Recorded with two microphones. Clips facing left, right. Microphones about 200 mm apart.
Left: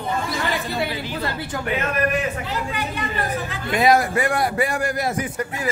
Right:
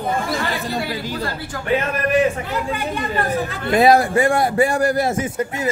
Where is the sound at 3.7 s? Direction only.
30° right (ahead or behind).